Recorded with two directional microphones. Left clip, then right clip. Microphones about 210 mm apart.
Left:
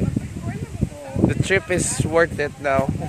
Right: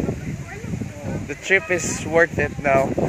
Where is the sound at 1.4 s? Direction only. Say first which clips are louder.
Right 6 dB; 5° left (ahead or behind).